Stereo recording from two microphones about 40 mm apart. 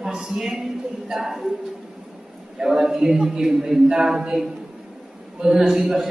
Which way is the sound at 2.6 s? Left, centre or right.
Centre.